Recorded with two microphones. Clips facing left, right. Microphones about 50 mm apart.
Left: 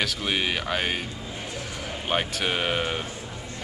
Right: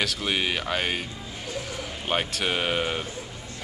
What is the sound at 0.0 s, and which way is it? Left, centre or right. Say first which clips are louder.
Speech: even; centre.